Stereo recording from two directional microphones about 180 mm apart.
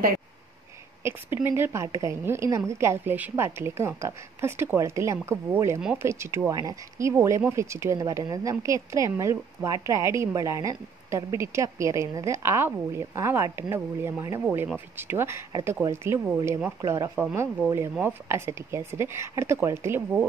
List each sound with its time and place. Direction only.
1.0 s speech: 10° right (ahead or behind)